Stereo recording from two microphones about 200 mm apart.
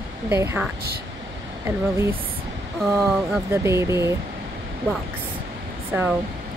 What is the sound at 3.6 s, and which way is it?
Speech, 15° right (ahead or behind).